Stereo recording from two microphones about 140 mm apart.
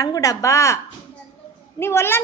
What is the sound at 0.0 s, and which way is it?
Speech, 25° left (ahead or behind).